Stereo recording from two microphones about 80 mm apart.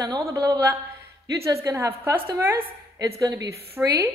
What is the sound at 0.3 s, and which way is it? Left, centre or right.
A woman's voice, right.